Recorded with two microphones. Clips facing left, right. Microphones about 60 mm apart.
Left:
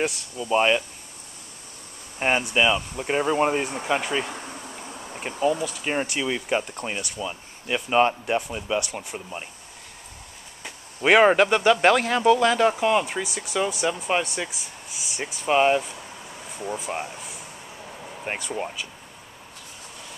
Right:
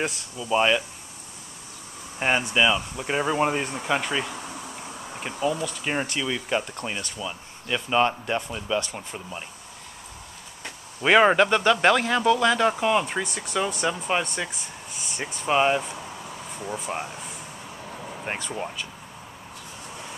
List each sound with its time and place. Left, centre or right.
0.0 s speech: centre
2.1 s speech: centre
10.6 s speech: centre
17.9 s a sound: centre
18.2 s speech: centre